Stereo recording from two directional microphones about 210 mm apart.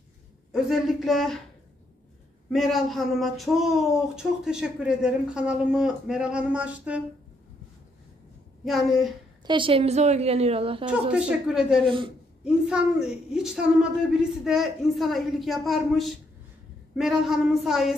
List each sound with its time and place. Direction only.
0.5 s speech: centre (ahead or behind)
2.5 s speech: centre (ahead or behind)
8.6 s speech: centre (ahead or behind)
9.5 s a woman's voice: 25° right (ahead or behind)
10.9 s speech: 5° right (ahead or behind)